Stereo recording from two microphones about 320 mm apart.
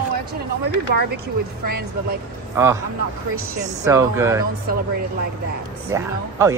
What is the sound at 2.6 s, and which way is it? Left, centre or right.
Speech, centre.